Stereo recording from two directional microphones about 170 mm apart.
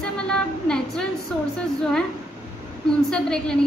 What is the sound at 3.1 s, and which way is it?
Speech, 5° left (ahead or behind).